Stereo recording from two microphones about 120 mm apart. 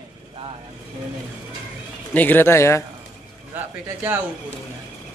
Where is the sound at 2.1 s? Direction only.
15° left (ahead or behind).